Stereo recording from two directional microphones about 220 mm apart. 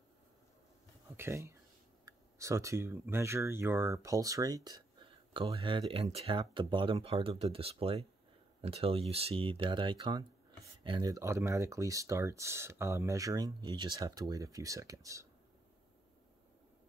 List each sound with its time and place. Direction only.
1.1 s speech: 10° right (ahead or behind)